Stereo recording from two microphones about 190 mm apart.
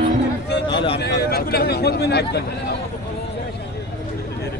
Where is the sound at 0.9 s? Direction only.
60° left (ahead or behind).